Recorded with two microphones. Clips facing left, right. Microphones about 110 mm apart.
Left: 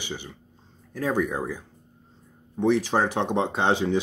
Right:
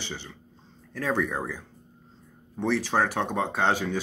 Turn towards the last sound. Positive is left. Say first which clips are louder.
# left 3 dB
turn(degrees=20)  # may be behind; listen again after turning